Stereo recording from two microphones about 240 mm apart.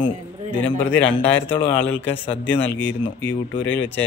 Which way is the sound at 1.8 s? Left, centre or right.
Left.